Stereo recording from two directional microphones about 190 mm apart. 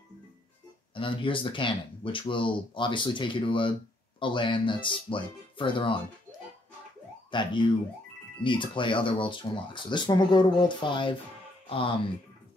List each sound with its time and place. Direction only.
0.9 s speech: 25° left (ahead or behind)
7.2 s speech: 25° left (ahead or behind)